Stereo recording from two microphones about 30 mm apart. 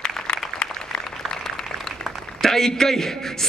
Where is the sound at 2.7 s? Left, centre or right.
Centre.